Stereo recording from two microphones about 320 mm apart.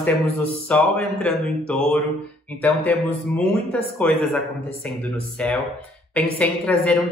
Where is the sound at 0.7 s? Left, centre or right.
Centre.